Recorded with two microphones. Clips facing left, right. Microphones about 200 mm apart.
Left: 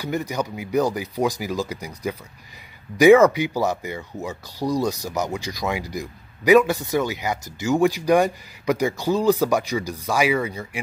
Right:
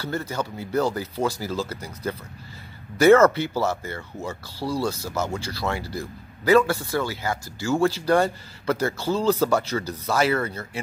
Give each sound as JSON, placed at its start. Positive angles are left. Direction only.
{"t": 0.0, "sound": "speech", "side_deg": 15}